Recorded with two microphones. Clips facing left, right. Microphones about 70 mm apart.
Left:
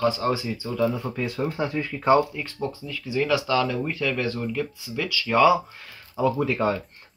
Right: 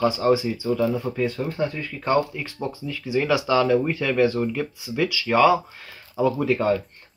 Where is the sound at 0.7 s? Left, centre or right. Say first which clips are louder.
Right 2 dB; centre.